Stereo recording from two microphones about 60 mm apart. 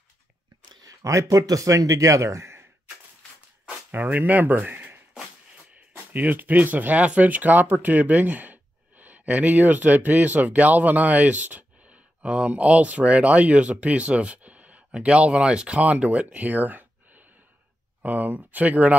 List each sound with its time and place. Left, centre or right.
0.8 s a man's voice: right
3.9 s speech: right
6.1 s speech: right